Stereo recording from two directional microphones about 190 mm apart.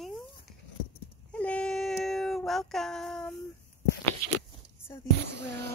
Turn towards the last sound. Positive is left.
turn(degrees=-60)  # may be behind; listen again after turning